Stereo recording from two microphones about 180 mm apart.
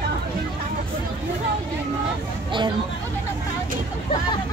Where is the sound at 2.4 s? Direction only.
25° right (ahead or behind).